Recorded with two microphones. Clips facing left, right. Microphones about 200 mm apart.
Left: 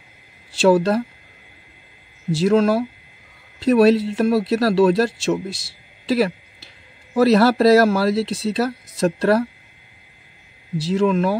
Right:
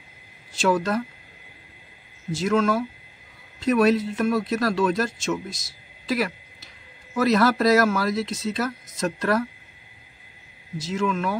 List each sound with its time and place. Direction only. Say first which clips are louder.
0.6 s speech: left 7 dB; 30° left (ahead or behind)
2.3 s speech: left 5 dB; 35° left (ahead or behind)
10.8 s speech: left 7 dB; 35° left (ahead or behind)